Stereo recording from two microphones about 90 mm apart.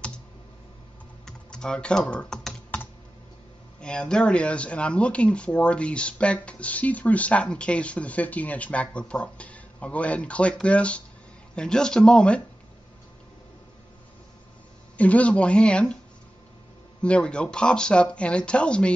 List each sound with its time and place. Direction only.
1.2 s typing: 10° left (ahead or behind)
3.8 s speech: 10° left (ahead or behind)
15.0 s speech: 15° left (ahead or behind)
17.0 s speech: 10° left (ahead or behind)